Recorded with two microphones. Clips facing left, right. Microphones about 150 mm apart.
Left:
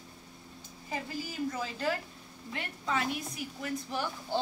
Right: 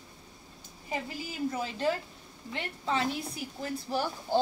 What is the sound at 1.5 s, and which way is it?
A woman's voice, 25° right (ahead or behind).